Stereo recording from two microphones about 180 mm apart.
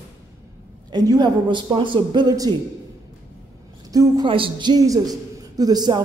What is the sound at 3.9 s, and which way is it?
Speech, 25° right (ahead or behind).